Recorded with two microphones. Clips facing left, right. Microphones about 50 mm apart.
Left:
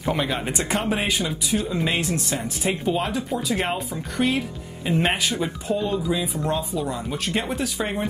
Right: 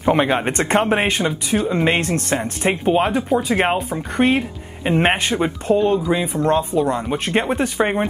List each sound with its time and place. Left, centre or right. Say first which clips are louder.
0.0 s speech: right 8 dB; right
0.5 s speech: right 7 dB; right
2.0 s speech: right 5 dB; right
2.7 s speech: right 7 dB; right
6.2 s speech: right 7 dB; right
6.5 s speech: right 10 dB; right